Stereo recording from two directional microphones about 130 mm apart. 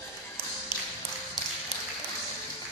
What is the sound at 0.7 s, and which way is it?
Tap, 35° left (ahead or behind).